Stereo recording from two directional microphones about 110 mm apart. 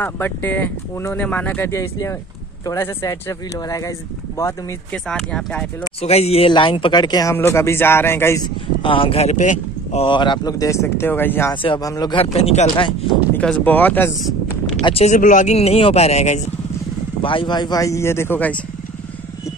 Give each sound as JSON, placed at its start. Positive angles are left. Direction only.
{"t": 0.0, "sound": "speech", "side_deg": 20}
{"t": 4.9, "sound": "speech", "side_deg": 5}
{"t": 5.9, "sound": "speech", "side_deg": 70}
{"t": 6.5, "sound": "speech", "side_deg": 50}
{"t": 7.3, "sound": "speech", "side_deg": 20}
{"t": 8.8, "sound": "speech", "side_deg": 55}
{"t": 10.0, "sound": "speech", "side_deg": 45}
{"t": 11.8, "sound": "speech", "side_deg": 30}
{"t": 12.4, "sound": "speech", "side_deg": 65}
{"t": 13.3, "sound": "speech", "side_deg": 15}
{"t": 14.8, "sound": "speech", "side_deg": 50}
{"t": 15.0, "sound": "speech", "side_deg": 80}
{"t": 17.2, "sound": "speech", "side_deg": 50}